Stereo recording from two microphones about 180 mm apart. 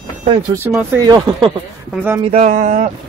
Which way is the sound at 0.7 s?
5° right (ahead or behind).